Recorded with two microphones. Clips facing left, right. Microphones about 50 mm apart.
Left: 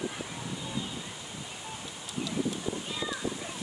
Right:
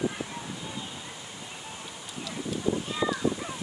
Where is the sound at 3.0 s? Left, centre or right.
Right.